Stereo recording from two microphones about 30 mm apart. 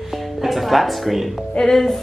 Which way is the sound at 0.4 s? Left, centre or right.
Centre.